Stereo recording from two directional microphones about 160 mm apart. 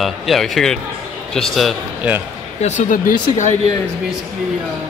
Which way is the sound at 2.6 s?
50° left (ahead or behind).